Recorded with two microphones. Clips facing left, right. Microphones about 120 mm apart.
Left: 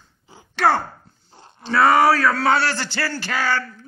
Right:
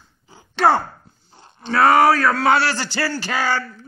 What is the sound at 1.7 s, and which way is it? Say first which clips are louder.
Speech: right 1 dB; centre (ahead or behind).